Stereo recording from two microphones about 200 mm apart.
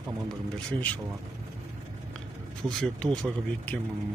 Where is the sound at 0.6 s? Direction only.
5° left (ahead or behind).